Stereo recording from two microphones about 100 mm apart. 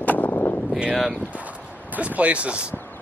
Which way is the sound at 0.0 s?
15° left (ahead or behind).